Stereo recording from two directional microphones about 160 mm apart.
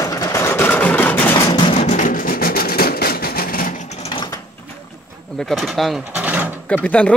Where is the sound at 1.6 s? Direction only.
40° left (ahead or behind); by 3.7 s 65° left (ahead or behind).